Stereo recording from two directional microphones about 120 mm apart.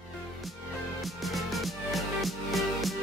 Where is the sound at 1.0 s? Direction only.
Centre (ahead or behind).